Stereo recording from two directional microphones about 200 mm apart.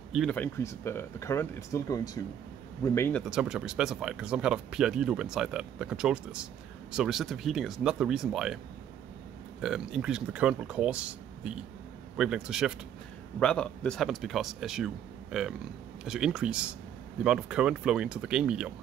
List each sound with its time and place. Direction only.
0.1 s speech: 5° left (ahead or behind)
3.3 s speech: 5° right (ahead or behind)
9.6 s speech: 5° right (ahead or behind)